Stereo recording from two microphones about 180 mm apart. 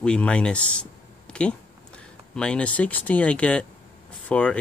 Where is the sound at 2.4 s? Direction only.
5° left (ahead or behind).